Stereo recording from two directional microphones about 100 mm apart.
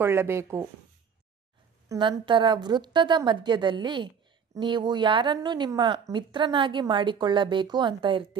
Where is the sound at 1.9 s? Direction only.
55° right (ahead or behind).